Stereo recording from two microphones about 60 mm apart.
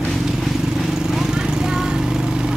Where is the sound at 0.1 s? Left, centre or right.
Centre.